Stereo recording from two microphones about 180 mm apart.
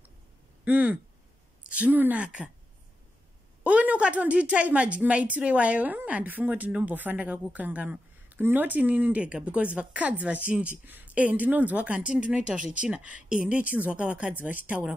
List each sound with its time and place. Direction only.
0.7 s a woman's voice: 10° right (ahead or behind)
3.6 s a woman's voice: 5° right (ahead or behind)